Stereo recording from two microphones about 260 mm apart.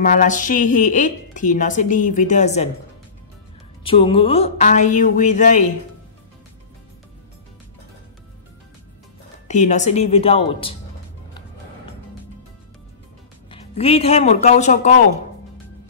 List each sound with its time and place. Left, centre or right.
0.0 s a woman's voice: left
3.8 s a woman's voice: left
9.5 s a woman's voice: left
13.5 s a man's voice: left